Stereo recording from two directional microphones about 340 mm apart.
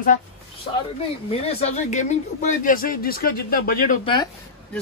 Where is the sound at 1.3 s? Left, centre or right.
Centre.